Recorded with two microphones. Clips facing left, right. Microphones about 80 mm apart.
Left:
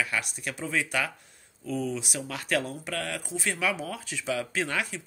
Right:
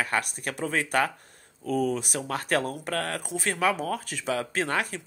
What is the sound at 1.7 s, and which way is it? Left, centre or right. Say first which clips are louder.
Speech: right 5 dB; right.